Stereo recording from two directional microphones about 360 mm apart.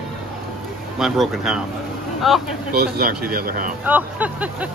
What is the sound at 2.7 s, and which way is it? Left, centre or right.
Speech, right.